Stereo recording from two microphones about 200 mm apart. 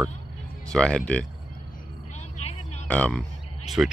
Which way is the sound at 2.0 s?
35° left (ahead or behind).